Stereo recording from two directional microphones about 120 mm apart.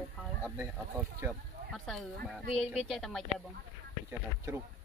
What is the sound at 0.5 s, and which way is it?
Speech, 20° right (ahead or behind).